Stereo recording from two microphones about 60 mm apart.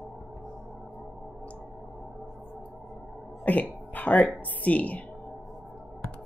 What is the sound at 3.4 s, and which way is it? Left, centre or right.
Throat clearing, left.